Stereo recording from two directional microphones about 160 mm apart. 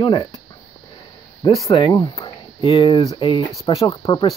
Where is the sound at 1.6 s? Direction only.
25° left (ahead or behind).